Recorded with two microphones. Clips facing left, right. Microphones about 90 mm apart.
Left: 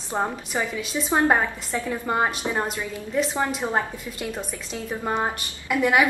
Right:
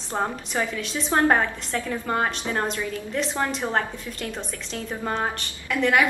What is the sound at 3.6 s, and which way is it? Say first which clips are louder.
A woman's voice: even; 15° left (ahead or behind).